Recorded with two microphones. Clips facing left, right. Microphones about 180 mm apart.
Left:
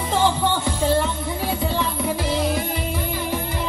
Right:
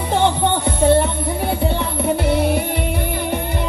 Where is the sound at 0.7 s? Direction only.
60° right (ahead or behind).